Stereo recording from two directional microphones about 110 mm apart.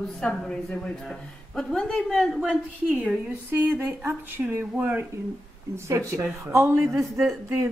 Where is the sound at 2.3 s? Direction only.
10° right (ahead or behind).